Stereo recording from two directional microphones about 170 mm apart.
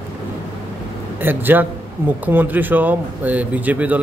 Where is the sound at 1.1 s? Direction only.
10° right (ahead or behind).